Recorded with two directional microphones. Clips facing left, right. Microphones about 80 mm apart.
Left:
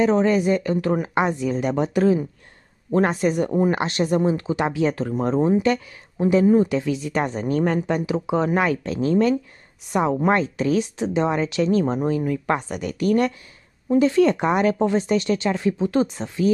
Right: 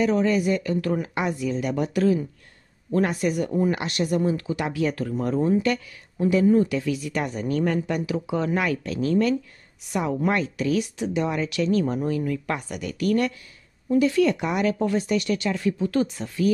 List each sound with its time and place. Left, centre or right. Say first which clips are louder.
0.0 s speech: left 3 dB; left